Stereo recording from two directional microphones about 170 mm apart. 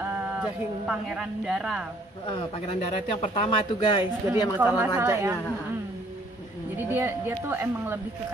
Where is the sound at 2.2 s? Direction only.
30° left (ahead or behind).